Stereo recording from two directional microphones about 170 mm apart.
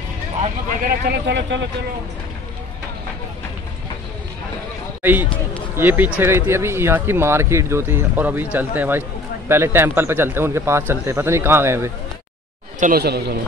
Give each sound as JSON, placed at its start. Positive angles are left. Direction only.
{"t": 0.8, "sound": "speech", "side_deg": -70}
{"t": 5.0, "sound": "speech", "side_deg": -10}
{"t": 12.8, "sound": "speech", "side_deg": -65}